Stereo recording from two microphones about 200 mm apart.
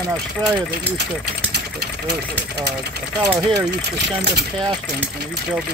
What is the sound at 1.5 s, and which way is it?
Engine, 55° right (ahead or behind).